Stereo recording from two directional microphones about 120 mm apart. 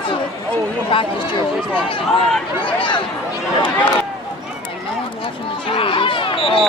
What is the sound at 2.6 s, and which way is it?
Chatter, 45° left (ahead or behind).